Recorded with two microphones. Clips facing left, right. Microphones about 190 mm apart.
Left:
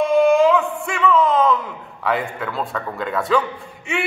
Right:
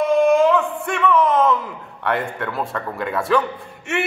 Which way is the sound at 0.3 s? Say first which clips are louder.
Even; centre (ahead or behind).